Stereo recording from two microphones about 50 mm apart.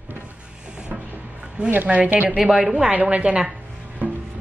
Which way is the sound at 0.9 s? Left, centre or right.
Centre.